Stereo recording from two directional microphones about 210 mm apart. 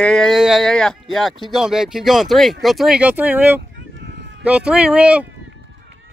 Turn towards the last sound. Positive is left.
turn(degrees=-5)  # may be behind; listen again after turning